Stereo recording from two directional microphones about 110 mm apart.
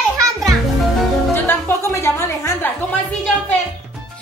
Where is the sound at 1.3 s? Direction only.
20° left (ahead or behind).